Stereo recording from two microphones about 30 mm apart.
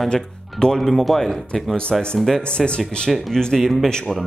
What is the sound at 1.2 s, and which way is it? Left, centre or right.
Speech, centre.